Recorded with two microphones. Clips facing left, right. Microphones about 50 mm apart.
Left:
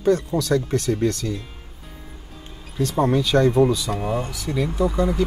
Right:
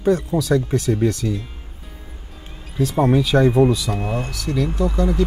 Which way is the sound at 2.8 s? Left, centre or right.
Centre.